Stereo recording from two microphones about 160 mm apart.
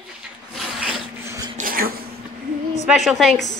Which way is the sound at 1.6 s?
65° right (ahead or behind).